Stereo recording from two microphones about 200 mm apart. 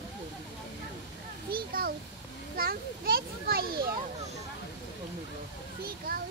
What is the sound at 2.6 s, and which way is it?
Children playing, 50° right (ahead or behind).